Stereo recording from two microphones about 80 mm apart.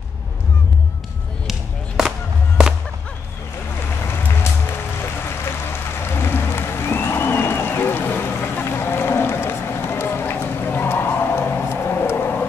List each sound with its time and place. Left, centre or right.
1.5 s music: centre
6.1 s a sound: left
11.7 s vehicle: left